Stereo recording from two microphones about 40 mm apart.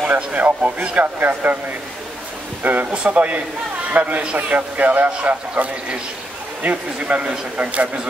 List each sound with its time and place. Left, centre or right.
0.0 s a man's voice: right
2.6 s speech: right
2.9 s a man's voice: right
5.6 s a man's voice: right